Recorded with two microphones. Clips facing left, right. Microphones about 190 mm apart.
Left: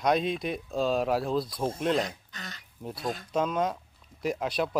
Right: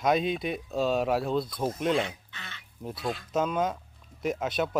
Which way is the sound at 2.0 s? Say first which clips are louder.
Even; 40° left (ahead or behind).